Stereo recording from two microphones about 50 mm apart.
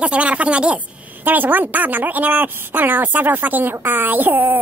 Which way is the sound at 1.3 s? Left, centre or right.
Right.